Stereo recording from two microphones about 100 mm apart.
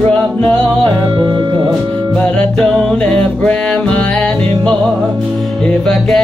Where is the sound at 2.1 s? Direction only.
10° left (ahead or behind).